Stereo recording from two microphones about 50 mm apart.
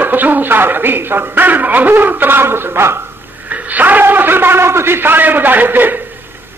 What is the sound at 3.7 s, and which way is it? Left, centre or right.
Speech, right.